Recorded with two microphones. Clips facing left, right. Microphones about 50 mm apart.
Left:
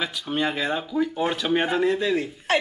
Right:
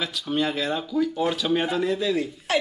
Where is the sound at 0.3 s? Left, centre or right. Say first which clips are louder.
Even; centre.